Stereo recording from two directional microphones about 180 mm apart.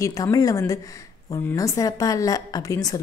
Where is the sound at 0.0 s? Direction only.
20° left (ahead or behind).